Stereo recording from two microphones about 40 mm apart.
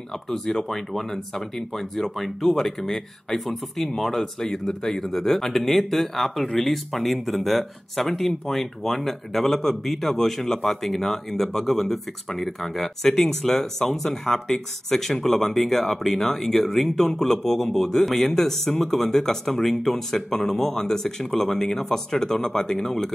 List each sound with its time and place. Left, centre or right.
0.7 s speech: centre